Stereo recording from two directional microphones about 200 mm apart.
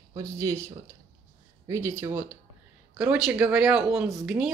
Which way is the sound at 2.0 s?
10° right (ahead or behind).